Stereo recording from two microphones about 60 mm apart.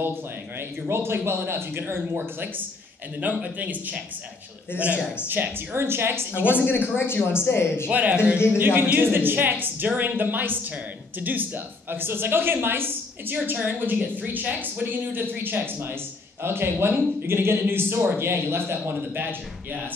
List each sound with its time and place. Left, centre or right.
0.0 s a woman's voice: right
5.3 s a woman's voice: right
6.4 s speech: left
7.8 s a woman's voice: right